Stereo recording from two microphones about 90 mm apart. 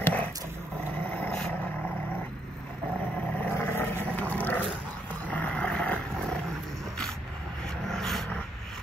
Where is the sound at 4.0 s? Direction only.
20° left (ahead or behind).